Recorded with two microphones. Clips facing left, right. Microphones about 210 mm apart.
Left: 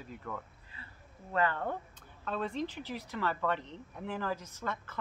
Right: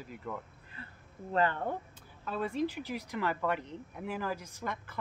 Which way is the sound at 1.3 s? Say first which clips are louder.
Right 2 dB; 30° right (ahead or behind).